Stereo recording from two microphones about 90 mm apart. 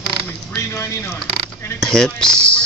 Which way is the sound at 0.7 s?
35° left (ahead or behind).